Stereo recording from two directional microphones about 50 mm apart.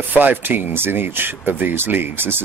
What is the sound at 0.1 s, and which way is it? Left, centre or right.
Speech, right.